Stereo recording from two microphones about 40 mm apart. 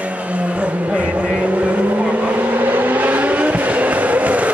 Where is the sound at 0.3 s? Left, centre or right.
Right.